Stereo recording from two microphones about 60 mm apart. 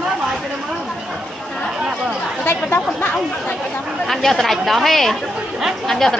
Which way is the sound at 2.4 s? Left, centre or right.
Left.